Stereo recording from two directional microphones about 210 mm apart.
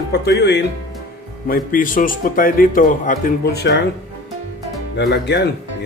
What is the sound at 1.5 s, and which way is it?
A man's voice, 40° left (ahead or behind).